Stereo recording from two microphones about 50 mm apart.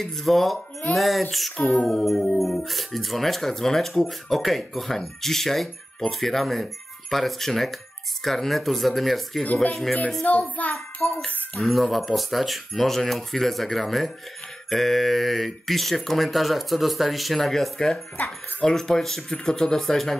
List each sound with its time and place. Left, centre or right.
0.0 s speech: centre
9.4 s speech: left
11.0 s music: left
11.5 s speech: centre